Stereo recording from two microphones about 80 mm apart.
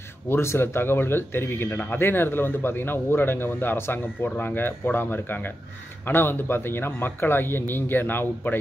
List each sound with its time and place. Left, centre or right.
0.3 s speech: left